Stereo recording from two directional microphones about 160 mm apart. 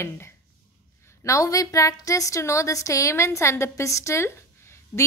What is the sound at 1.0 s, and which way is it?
A woman's voice, 20° left (ahead or behind).